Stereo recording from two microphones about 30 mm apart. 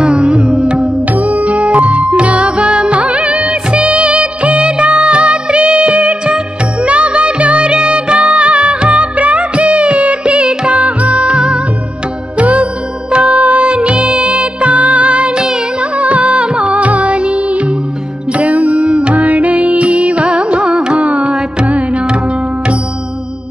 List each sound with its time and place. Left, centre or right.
0.2 s music: right
1.1 s music: right
3.0 s music of bollywood: right
11.3 s music: right
13.7 s music: right
15.8 s music: right
16.7 s music: right
18.8 s music: right
19.1 s music: right
21.0 s carnatic music: right
21.3 s music: right
21.6 s music: right